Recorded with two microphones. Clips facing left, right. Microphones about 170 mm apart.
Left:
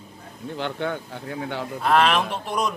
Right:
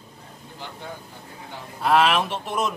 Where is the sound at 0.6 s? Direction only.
75° left (ahead or behind).